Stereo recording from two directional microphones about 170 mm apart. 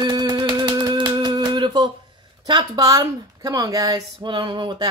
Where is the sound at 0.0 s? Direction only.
25° right (ahead or behind).